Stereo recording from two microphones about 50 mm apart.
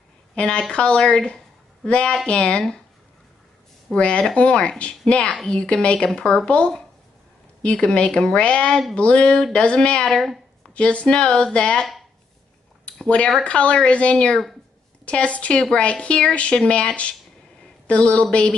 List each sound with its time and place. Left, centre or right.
0.4 s speech: left
3.9 s speech: left
10.0 s speech: centre
10.7 s speech: left
12.8 s a sound: left
13.4 s speech: left